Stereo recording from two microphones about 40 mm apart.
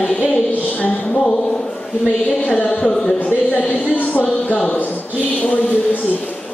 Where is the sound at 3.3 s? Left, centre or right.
Left.